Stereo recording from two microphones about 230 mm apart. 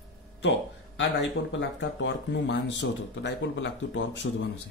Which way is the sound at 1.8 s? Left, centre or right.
Left.